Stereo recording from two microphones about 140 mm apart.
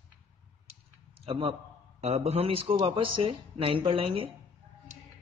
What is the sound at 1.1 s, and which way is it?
Speech, 40° right (ahead or behind).